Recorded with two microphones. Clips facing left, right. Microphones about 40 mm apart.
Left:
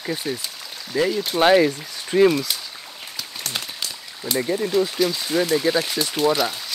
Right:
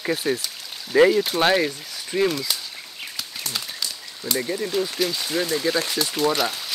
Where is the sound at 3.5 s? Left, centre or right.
Left.